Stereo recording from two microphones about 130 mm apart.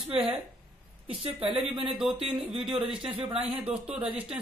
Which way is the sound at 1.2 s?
45° right (ahead or behind).